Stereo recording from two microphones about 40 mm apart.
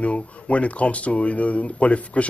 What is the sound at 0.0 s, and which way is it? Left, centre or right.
Speech, left.